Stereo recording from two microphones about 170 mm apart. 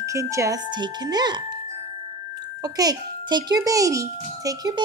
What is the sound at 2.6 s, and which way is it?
Speech, 20° right (ahead or behind).